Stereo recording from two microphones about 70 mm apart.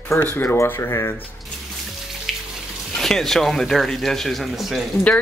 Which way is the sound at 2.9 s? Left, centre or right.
Centre.